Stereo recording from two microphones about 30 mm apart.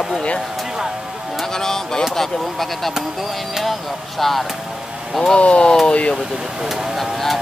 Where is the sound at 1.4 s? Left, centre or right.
Centre.